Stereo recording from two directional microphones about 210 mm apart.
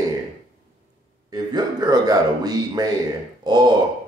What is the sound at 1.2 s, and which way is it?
Speech, 20° right (ahead or behind).